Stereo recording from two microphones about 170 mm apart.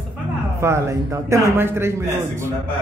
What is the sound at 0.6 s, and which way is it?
Speech, 15° right (ahead or behind).